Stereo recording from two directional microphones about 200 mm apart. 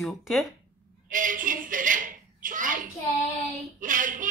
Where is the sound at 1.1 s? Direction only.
40° right (ahead or behind).